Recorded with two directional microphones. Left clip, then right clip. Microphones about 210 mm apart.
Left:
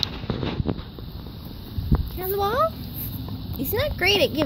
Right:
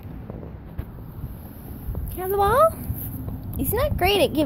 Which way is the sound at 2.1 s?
15° right (ahead or behind).